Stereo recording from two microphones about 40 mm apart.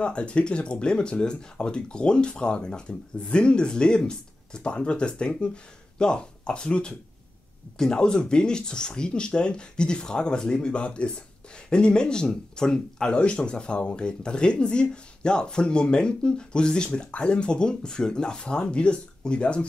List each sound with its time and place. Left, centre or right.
0.0 s speech: left
13.1 s speech: left